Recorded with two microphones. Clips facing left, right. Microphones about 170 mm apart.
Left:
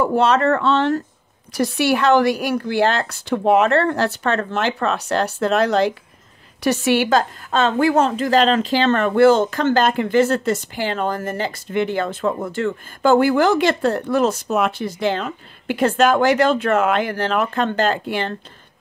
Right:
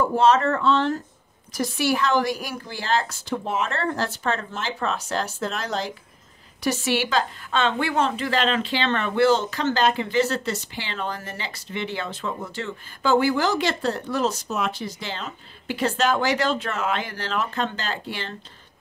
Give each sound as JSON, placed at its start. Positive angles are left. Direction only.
{"t": 0.0, "sound": "a woman's voice", "side_deg": 65}